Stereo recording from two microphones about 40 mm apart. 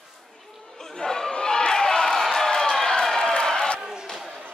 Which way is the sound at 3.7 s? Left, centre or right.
Right.